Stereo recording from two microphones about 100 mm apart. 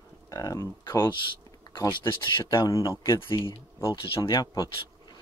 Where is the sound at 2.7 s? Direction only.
35° left (ahead or behind).